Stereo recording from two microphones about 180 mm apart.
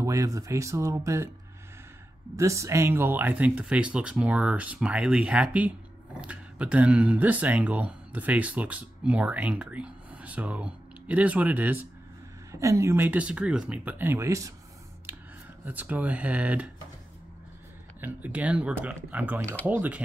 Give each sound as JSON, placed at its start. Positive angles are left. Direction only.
{"t": 0.0, "sound": "speech", "side_deg": -20}
{"t": 2.3, "sound": "speech", "side_deg": -15}
{"t": 15.1, "sound": "a sound", "side_deg": -10}
{"t": 15.6, "sound": "speech", "side_deg": -10}
{"t": 18.0, "sound": "speech", "side_deg": -10}